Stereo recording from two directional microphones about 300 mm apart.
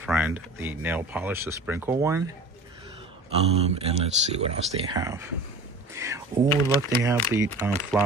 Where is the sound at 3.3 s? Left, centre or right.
Right.